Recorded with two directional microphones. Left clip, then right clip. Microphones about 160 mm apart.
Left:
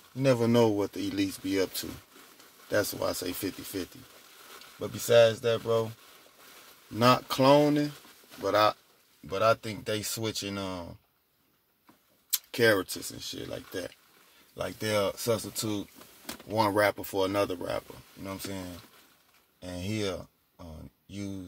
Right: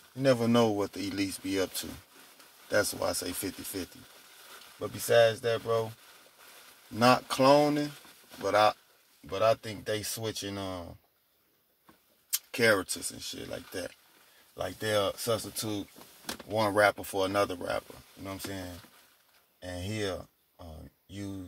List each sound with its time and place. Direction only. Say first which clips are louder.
0.2 s speech: left 1 dB; 35° left (ahead or behind)
4.7 s speech: left 2 dB; 30° left (ahead or behind)
7.0 s speech: even; 30° left (ahead or behind)
12.3 s speech: left 1 dB; 30° left (ahead or behind)
19.8 s speech: left 2 dB; 35° left (ahead or behind)